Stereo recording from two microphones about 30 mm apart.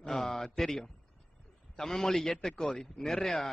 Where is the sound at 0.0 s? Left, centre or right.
Left.